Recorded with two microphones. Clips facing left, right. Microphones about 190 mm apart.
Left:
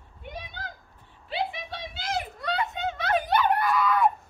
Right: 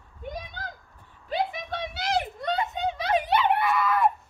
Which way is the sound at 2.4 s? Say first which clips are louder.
Right 2 dB; 20° right (ahead or behind).